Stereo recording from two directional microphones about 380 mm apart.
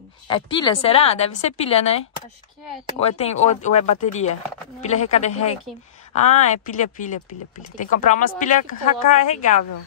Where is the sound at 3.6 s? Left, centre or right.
Centre.